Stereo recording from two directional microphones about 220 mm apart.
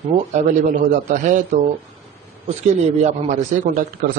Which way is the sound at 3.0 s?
30° right (ahead or behind).